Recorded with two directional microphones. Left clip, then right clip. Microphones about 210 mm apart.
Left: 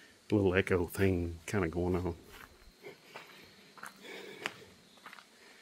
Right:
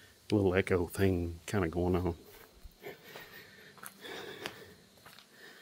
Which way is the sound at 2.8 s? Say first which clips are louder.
Right 4 dB; 15° right (ahead or behind).